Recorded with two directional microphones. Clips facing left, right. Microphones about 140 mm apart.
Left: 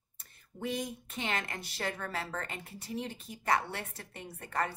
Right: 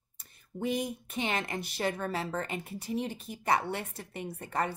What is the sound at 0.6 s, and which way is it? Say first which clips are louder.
A woman's voice: right 4 dB; 15° right (ahead or behind).